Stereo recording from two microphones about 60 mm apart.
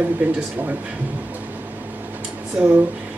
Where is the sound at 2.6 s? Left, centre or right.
Right.